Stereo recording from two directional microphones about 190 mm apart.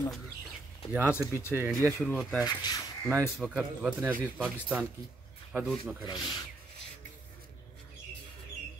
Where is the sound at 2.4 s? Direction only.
20° left (ahead or behind).